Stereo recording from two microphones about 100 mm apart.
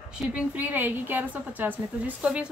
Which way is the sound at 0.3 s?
15° right (ahead or behind).